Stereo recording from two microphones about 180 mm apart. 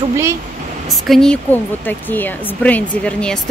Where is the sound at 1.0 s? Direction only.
5° left (ahead or behind).